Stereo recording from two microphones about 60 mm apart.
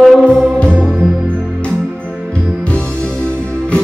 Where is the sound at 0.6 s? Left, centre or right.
Centre.